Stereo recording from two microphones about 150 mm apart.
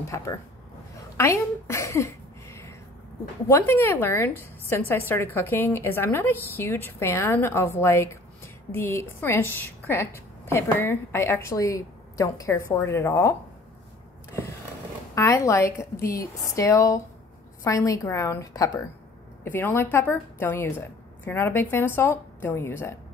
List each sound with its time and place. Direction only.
0.1 s a woman's voice: 20° left (ahead or behind)
1.1 s a sound: 20° left (ahead or behind)
3.4 s a woman's voice: 15° left (ahead or behind)
15.1 s a woman's voice: 20° left (ahead or behind)